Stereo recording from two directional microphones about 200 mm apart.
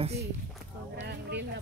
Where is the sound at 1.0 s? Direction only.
60° right (ahead or behind).